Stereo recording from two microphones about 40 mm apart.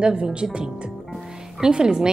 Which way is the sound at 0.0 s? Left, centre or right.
Right.